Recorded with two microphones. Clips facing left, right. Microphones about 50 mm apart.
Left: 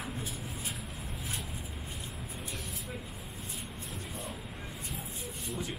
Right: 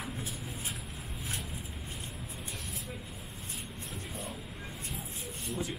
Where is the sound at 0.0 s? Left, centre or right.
Centre.